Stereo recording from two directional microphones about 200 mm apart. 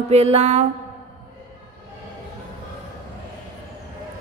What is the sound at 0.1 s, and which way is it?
Mantra, 30° right (ahead or behind).